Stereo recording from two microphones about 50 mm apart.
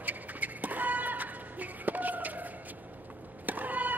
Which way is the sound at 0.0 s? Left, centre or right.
Right.